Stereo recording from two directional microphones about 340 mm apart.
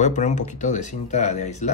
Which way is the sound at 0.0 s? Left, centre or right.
Left.